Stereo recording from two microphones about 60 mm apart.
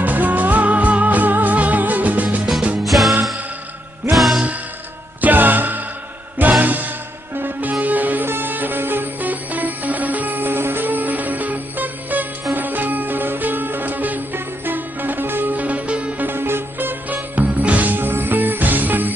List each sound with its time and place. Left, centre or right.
0.0 s music: right
2.9 s music: centre
5.2 s music: right
16.3 s music: right